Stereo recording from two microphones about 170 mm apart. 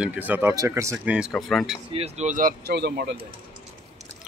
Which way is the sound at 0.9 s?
5° right (ahead or behind).